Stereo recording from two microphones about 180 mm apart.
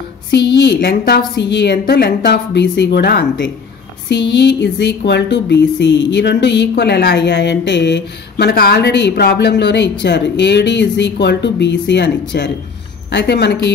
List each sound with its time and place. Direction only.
0.6 s speech: 70° left (ahead or behind)